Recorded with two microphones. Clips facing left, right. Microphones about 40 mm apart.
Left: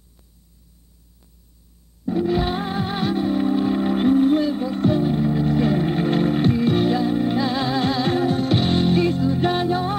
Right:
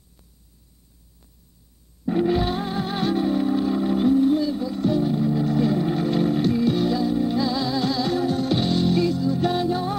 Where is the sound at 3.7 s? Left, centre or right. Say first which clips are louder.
Left 1 dB; left.